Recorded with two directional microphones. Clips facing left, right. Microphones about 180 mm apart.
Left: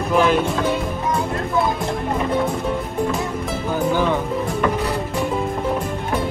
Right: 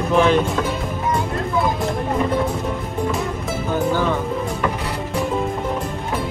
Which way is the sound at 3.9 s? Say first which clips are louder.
Left 3 dB; 15° left (ahead or behind).